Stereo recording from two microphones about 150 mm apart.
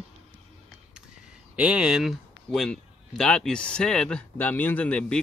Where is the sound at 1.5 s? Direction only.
5° right (ahead or behind).